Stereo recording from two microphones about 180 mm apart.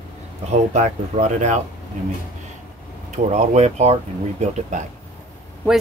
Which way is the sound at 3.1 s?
40° right (ahead or behind).